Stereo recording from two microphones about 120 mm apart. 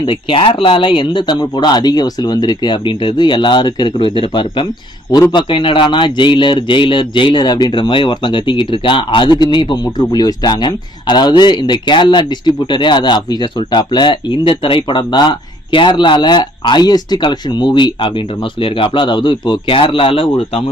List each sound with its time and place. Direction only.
0.0 s a man's voice: 45° left (ahead or behind)